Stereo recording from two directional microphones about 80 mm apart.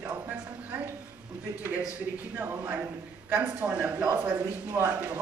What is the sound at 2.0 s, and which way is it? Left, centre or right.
A man's voice, right.